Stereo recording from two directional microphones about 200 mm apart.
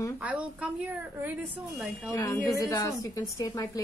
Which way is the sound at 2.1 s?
15° left (ahead or behind).